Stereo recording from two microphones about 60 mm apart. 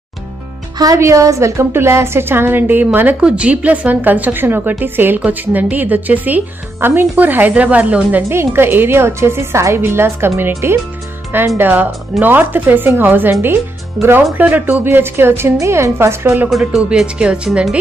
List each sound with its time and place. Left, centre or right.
0.9 s a woman's voice: right
3.2 s a woman's voice: centre
8.3 s a woman's voice: right
9.8 s a woman's voice: right
11.5 s a woman's voice: right
14.9 s a woman's voice: right
16.4 s speech: centre
17.0 s speech: centre